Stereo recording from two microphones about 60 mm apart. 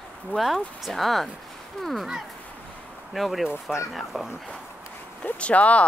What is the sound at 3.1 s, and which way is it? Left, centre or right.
Speech, centre.